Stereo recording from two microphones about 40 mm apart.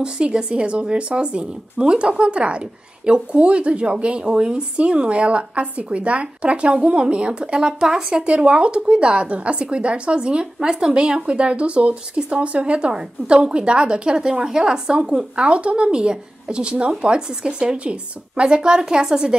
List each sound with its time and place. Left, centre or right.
0.0 s a woman's voice: right